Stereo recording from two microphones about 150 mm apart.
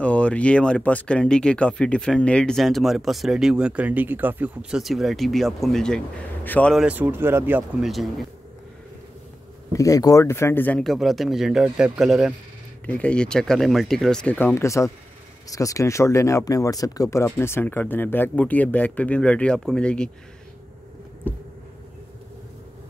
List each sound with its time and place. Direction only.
0.0 s speech: 10° left (ahead or behind)
6.7 s speech: 5° right (ahead or behind)
7.8 s speech: centre (ahead or behind)
9.7 s speech: 25° left (ahead or behind); by 12.4 s 5° right (ahead or behind)
12.8 s speech: 10° left (ahead or behind)